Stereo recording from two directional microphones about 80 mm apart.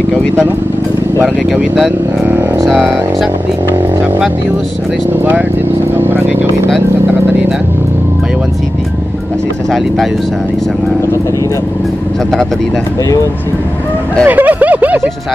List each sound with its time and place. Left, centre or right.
1.2 s speech: centre
5.9 s vehicle: right
14.2 s speech: right